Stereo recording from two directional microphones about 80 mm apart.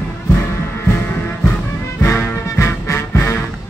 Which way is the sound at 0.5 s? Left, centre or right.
Left.